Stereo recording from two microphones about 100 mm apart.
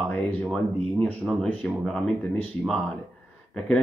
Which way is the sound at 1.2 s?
5° right (ahead or behind).